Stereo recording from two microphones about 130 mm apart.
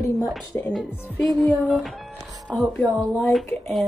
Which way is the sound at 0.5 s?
15° left (ahead or behind).